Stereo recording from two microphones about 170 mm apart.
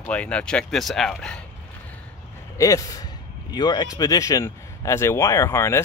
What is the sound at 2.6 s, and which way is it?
Speech, 20° left (ahead or behind).